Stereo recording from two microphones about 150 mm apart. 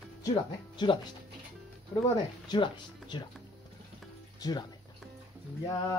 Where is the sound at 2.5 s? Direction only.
30° left (ahead or behind).